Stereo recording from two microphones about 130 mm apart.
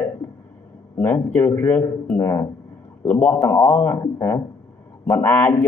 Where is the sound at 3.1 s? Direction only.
10° left (ahead or behind).